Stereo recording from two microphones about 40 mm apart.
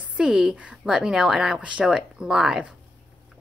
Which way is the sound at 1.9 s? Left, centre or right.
Centre.